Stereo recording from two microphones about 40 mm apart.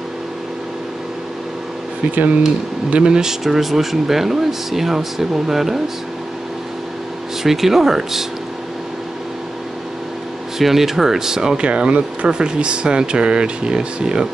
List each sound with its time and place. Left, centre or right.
2.9 s speech: right
3.4 s speech: centre
7.4 s speech: centre
10.6 s speech: centre
11.6 s speech: right